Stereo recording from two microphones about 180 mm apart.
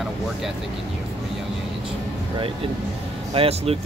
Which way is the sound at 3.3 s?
35° right (ahead or behind).